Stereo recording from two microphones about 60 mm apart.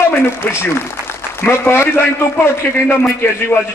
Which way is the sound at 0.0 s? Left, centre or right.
Left.